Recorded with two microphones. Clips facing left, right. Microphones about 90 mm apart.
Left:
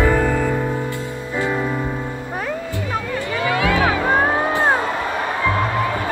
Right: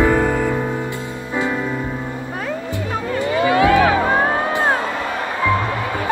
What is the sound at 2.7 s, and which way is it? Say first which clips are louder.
Music: right 2 dB; 20° right (ahead or behind).